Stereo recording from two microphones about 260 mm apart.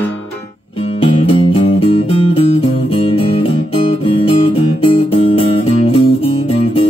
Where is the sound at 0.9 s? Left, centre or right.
Centre.